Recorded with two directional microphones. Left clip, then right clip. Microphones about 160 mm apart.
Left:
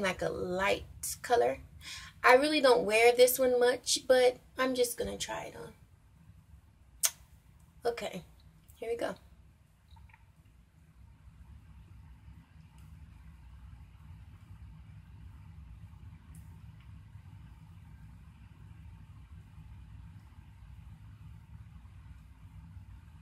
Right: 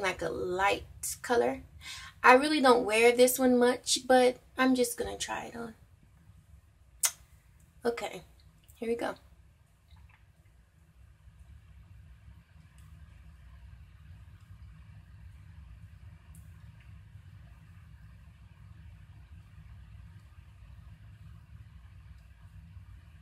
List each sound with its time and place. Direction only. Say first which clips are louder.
0.0 s a woman's voice: right 1 dB; 15° right (ahead or behind)
7.8 s speech: right 2 dB; 20° right (ahead or behind)